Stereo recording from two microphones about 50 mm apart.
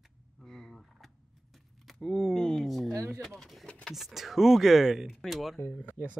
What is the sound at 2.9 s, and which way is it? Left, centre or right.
Speech, right.